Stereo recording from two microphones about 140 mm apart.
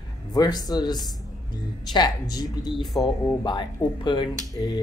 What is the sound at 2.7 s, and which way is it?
Speech, centre (ahead or behind).